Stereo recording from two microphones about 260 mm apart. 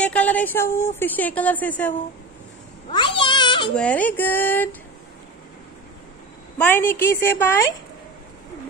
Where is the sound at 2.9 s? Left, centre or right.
Centre.